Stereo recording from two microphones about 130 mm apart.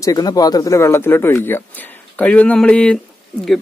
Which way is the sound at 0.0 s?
30° left (ahead or behind).